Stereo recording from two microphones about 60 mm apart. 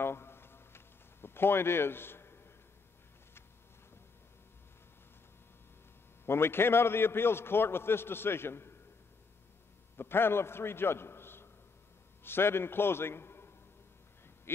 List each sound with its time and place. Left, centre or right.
0.0 s a sound: left
6.2 s a man's voice: left
9.9 s a man's voice: left